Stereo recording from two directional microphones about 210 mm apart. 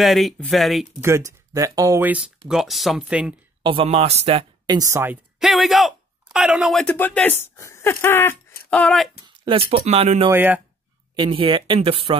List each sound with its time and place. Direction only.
0.0 s speech: centre (ahead or behind)
1.0 s speech: 15° right (ahead or behind)
3.6 s speech: 25° right (ahead or behind); by 9.1 s 5° left (ahead or behind)
9.4 s speech: 25° right (ahead or behind)
10.3 s speech: 10° right (ahead or behind)
11.1 s speech: 20° right (ahead or behind)